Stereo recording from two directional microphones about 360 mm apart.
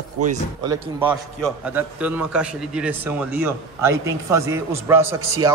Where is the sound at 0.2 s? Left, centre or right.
Centre.